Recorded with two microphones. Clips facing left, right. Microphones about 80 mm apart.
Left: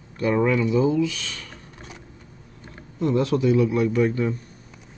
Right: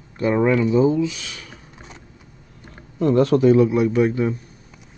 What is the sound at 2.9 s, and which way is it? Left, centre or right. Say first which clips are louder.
Speech: right 5 dB; right.